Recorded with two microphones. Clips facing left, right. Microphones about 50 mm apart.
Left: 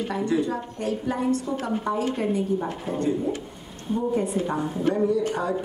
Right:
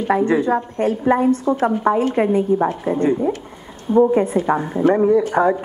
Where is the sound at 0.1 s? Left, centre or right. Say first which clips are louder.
Right 11 dB; right.